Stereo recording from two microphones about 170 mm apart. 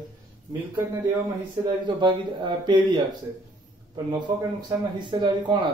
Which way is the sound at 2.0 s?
25° right (ahead or behind).